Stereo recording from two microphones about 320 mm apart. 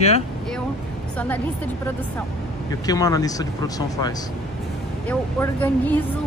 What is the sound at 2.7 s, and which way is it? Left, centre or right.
Speech, centre.